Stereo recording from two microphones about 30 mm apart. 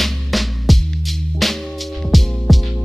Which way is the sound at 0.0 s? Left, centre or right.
Centre.